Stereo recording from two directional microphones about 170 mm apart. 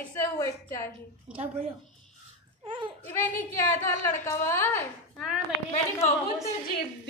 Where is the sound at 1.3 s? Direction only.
5° right (ahead or behind).